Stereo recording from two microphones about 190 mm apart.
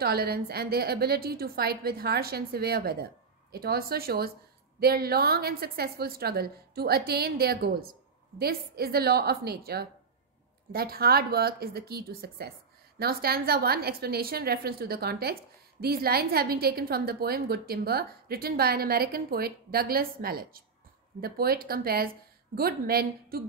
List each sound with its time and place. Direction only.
0.0 s a woman's voice: 55° right (ahead or behind)